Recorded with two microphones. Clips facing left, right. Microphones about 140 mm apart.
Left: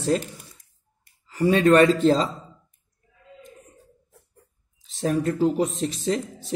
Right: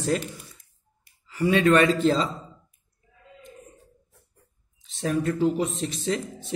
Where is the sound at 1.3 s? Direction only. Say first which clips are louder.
Left 2 dB; 40° left (ahead or behind).